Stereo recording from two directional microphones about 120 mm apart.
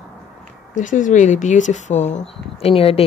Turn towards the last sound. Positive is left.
turn(degrees=55)  # may be behind; listen again after turning